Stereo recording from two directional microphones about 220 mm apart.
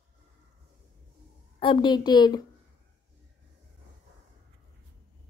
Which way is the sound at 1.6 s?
20° left (ahead or behind).